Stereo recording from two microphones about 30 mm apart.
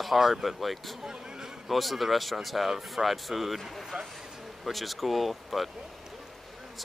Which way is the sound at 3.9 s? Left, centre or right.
Right.